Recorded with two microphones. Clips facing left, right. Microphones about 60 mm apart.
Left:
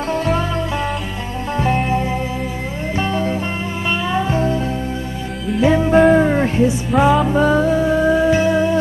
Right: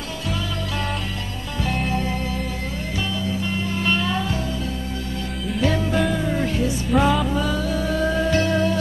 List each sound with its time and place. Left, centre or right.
1.6 s music: left
3.0 s music: left
3.8 s music: centre; by 4.6 s left
5.6 s music: left
6.9 s music: centre
7.3 s music: left; by 8.7 s centre